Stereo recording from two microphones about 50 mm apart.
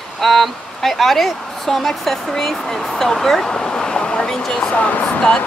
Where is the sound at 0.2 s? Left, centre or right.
Centre.